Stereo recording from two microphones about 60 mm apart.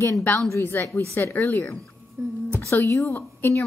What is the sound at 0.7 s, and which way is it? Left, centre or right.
A woman's voice, left.